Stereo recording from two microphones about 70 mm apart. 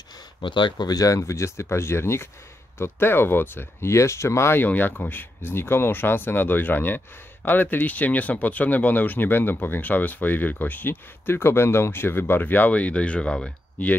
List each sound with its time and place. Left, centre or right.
0.6 s speech: left
3.9 s speech: left
4.6 s speech: left